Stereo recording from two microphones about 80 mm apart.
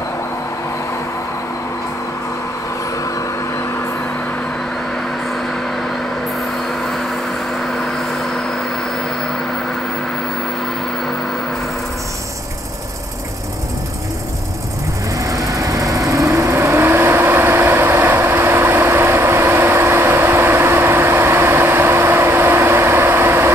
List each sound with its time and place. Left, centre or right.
15.1 s vehicle: right